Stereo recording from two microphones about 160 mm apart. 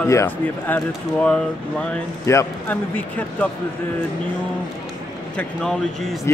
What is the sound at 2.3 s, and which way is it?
Speech, 15° left (ahead or behind).